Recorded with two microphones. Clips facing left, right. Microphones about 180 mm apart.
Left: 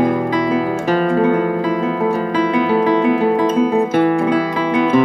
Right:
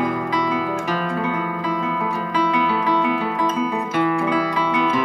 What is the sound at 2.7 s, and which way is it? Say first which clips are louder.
Music: left 7 dB; 30° left (ahead or behind).